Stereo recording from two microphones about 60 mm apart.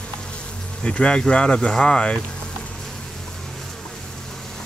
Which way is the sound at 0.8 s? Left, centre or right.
Centre.